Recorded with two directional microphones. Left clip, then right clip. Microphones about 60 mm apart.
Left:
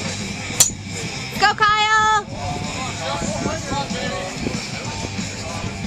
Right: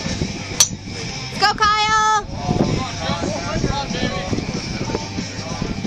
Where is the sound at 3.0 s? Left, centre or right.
Right.